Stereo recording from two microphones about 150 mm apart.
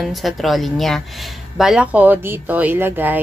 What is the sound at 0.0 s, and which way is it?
A woman's voice, centre (ahead or behind).